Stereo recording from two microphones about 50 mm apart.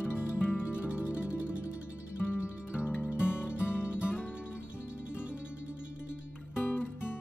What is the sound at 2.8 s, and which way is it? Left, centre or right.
Music, left.